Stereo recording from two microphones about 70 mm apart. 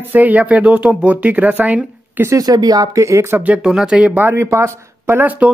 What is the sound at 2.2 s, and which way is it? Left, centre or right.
Speech, right.